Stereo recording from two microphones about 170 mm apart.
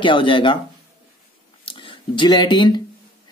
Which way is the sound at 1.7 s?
30° left (ahead or behind).